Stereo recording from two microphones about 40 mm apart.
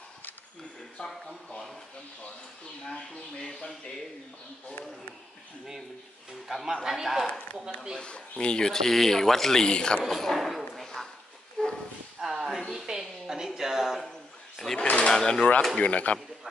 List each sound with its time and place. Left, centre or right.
2.9 s speech: centre
6.4 s speech: centre
8.0 s speech: left
8.6 s speech: centre
10.0 s a sound: centre
11.6 s bow-wow: centre
12.2 s a sound: centre
14.8 s speech: left
15.0 s speech: centre
15.8 s speech: left